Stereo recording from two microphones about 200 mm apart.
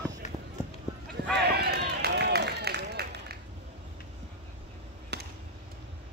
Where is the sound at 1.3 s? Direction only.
55° right (ahead or behind).